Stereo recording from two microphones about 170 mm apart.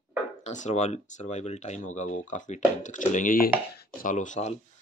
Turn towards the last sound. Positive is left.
turn(degrees=45)  # may be behind; listen again after turning